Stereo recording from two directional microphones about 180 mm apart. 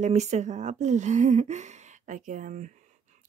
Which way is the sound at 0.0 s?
40° right (ahead or behind).